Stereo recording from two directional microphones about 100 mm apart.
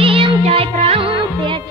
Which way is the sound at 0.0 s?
65° right (ahead or behind).